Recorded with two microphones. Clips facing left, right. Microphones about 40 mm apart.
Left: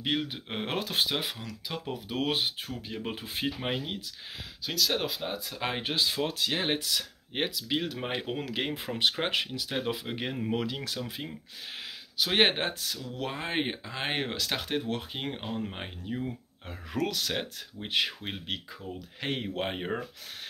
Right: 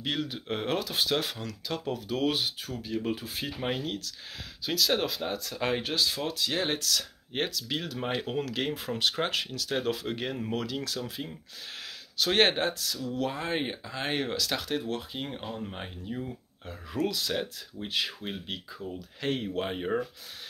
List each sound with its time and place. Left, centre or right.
0.0 s speech: left
0.7 s speech: left
1.0 s speech: centre
2.0 s speech: left
3.6 s speech: centre
4.6 s speech: centre
5.8 s speech: left
6.5 s speech: left
9.8 s speech: centre
10.5 s speech: left
12.2 s speech: centre
12.5 s speech: left
16.6 s speech: left